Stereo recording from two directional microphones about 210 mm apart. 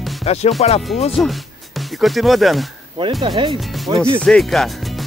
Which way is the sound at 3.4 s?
25° right (ahead or behind).